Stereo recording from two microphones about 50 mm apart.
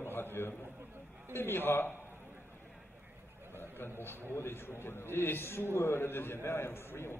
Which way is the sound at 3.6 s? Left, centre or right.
Left.